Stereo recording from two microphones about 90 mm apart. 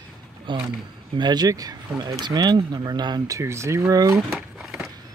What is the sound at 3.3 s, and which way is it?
Speech, 30° right (ahead or behind).